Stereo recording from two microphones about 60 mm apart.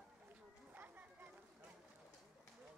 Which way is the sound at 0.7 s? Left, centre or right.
Right.